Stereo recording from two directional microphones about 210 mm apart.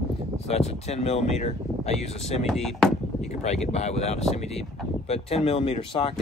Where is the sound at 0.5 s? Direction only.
30° left (ahead or behind).